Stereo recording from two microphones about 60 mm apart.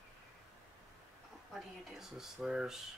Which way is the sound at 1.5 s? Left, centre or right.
Centre.